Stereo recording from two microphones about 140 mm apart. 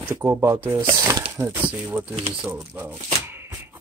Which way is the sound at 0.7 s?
25° right (ahead or behind).